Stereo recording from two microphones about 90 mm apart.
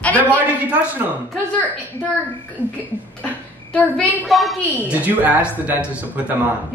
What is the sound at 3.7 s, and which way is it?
Speech, 10° left (ahead or behind).